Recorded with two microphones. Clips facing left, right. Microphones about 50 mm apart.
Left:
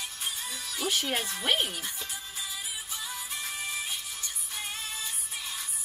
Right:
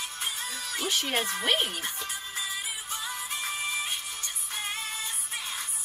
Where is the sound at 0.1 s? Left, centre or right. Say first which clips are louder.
Right 2 dB; right.